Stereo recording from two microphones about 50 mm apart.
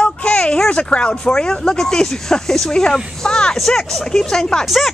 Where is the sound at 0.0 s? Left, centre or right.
Left.